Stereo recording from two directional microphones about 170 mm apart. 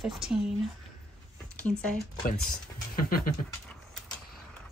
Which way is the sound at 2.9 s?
55° left (ahead or behind).